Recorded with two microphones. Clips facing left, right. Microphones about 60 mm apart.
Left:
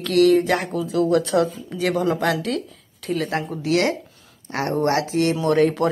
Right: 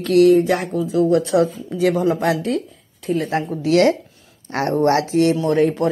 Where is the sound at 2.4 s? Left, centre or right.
Left.